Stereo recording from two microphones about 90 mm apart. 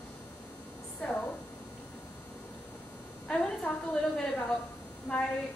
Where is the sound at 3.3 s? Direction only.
10° left (ahead or behind).